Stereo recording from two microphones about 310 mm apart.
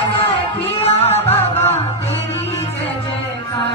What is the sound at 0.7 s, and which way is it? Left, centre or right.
Music, centre.